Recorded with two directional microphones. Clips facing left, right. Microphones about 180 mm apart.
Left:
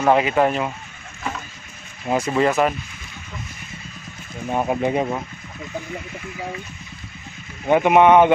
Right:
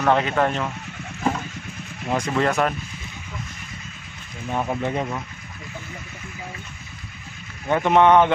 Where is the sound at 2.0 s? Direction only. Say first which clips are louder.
Left 3 dB; 5° left (ahead or behind).